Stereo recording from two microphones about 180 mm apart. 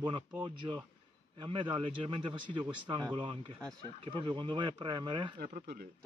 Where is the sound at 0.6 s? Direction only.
20° right (ahead or behind).